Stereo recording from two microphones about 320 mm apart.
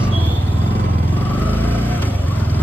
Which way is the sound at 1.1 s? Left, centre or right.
Centre.